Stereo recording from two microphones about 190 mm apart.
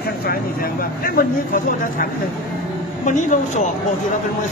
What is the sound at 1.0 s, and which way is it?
Speech, 50° left (ahead or behind).